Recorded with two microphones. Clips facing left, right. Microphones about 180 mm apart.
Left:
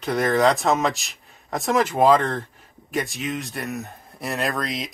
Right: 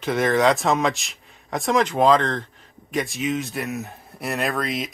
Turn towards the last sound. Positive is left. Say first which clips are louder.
# right 1 dB
turn(degrees=0)  # may be behind; listen again after turning